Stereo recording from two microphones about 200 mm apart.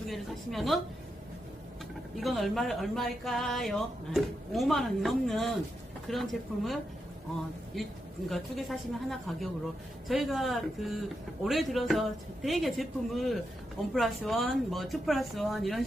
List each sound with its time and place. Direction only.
0.1 s speech: centre (ahead or behind)
2.1 s speech: centre (ahead or behind)
8.3 s speech: centre (ahead or behind)